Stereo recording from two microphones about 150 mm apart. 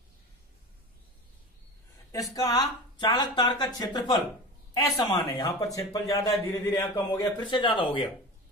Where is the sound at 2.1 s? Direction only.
25° left (ahead or behind).